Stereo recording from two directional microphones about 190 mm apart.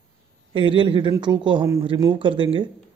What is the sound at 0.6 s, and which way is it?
Speech, 25° right (ahead or behind).